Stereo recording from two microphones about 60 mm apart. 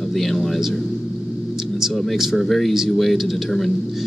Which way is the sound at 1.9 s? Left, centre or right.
Centre.